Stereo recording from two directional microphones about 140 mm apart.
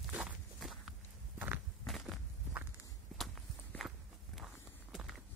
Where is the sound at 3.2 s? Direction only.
Centre (ahead or behind).